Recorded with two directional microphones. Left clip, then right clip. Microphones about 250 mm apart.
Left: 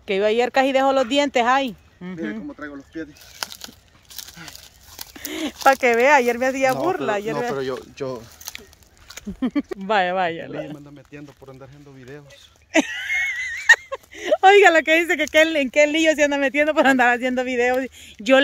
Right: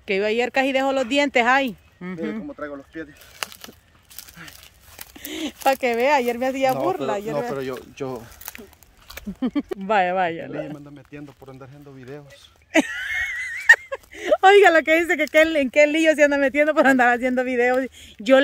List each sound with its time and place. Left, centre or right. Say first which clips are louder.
0.0 s speech: left 2 dB; centre
4.9 s speech: left 2 dB; centre
9.4 s speech: left 1 dB; centre
11.1 s speech: even; right
12.7 s speech: left 1 dB; centre